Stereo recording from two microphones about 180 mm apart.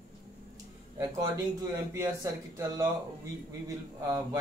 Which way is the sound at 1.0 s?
15° right (ahead or behind).